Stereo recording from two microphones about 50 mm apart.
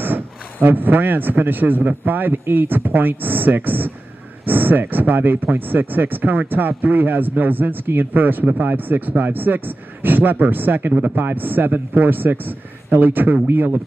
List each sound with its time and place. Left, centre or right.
0.0 s a man's voice: right